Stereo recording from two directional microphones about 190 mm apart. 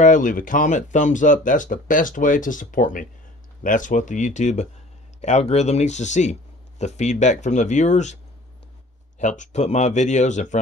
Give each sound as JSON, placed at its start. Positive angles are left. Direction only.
{"t": 0.0, "sound": "speech", "side_deg": 45}
{"t": 9.4, "sound": "speech", "side_deg": 35}